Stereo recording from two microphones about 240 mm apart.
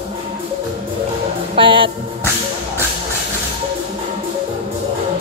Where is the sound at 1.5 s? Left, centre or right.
Right.